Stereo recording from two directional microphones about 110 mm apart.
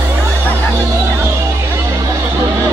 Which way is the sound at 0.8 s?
25° right (ahead or behind).